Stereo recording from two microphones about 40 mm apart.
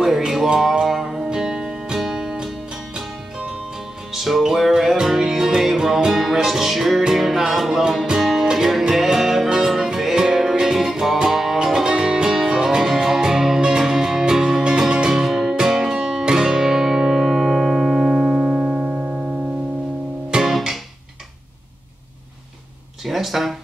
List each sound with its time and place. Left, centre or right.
0.7 s music: centre
4.1 s music: centre
18.2 s music: right
20.2 s music: centre
23.0 s a sound: centre